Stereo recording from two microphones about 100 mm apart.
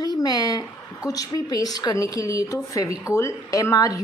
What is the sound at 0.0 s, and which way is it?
A woman's voice, 40° left (ahead or behind).